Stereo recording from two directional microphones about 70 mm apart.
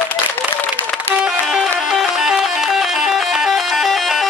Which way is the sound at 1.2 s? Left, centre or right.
Centre.